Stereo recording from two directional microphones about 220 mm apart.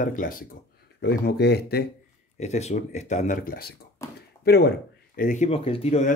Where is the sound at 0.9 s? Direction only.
50° left (ahead or behind).